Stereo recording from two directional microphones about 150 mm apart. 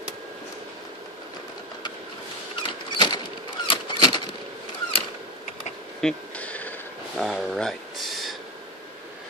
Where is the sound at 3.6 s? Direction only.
35° left (ahead or behind).